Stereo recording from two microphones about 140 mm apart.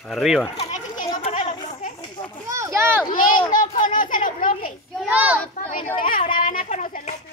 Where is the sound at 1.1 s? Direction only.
55° left (ahead or behind).